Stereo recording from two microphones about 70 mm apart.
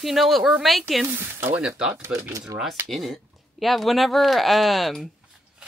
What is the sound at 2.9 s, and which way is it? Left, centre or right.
Speech, centre.